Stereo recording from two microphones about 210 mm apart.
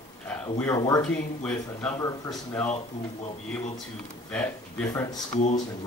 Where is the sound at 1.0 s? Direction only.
5° left (ahead or behind).